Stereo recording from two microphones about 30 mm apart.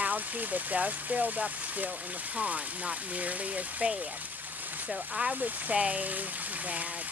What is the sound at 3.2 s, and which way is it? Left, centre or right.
Speech, right.